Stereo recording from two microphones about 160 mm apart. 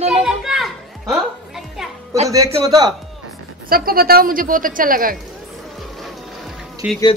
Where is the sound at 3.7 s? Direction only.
65° right (ahead or behind).